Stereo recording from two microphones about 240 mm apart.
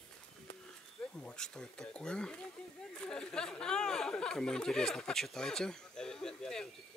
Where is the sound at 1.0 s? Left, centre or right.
Centre.